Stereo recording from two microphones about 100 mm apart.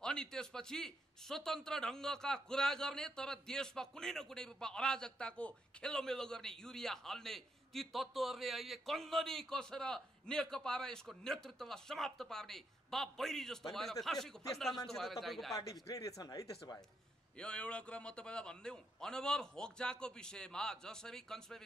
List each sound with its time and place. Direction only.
0.0 s a man's voice: 5° left (ahead or behind)
15.6 s speech: 35° left (ahead or behind)
17.4 s a man's voice: 10° left (ahead or behind)